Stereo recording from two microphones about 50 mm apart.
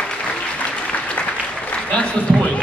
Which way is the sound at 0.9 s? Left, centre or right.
Left.